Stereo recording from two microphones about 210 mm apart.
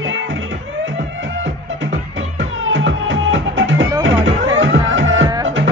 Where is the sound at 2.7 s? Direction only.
65° right (ahead or behind).